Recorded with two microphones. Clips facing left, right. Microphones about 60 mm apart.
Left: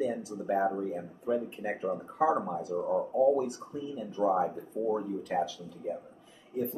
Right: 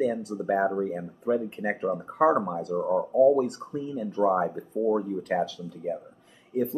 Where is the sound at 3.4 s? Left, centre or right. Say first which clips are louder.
Right 5 dB; right.